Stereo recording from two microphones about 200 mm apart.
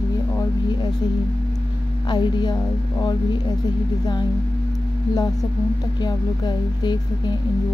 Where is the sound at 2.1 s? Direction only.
20° left (ahead or behind).